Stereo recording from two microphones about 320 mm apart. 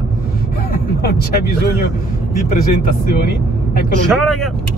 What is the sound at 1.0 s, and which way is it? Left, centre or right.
Speech, left.